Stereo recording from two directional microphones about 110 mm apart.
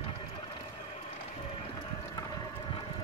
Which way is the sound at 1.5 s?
40° left (ahead or behind).